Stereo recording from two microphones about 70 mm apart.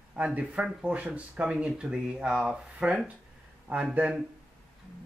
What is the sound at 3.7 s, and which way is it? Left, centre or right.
Speech, right.